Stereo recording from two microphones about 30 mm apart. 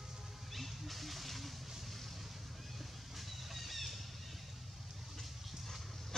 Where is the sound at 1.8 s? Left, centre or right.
Centre.